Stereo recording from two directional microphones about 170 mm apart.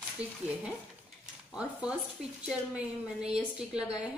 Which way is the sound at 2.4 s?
5° right (ahead or behind).